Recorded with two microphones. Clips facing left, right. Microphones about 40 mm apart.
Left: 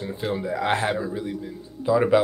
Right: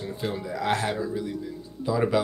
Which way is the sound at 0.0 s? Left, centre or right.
Centre.